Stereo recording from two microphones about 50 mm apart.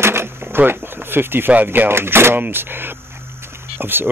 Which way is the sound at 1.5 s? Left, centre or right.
Right.